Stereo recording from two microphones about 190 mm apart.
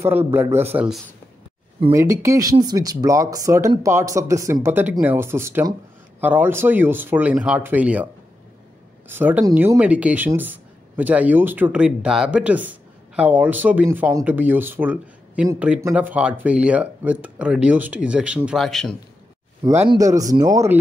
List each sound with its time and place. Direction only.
0.0 s speech: 10° right (ahead or behind)
9.1 s speech: 10° right (ahead or behind)
19.9 s speech: 15° right (ahead or behind)